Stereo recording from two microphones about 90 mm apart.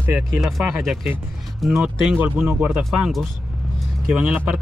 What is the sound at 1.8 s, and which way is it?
Speech, 10° right (ahead or behind).